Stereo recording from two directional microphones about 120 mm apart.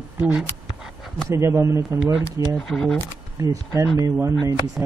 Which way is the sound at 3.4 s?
30° right (ahead or behind).